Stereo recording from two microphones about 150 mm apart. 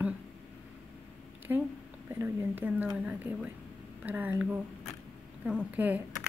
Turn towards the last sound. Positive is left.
turn(degrees=-10)  # may be behind; listen again after turning